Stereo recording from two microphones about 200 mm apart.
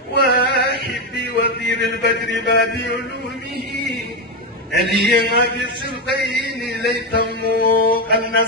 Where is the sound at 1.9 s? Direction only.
55° left (ahead or behind).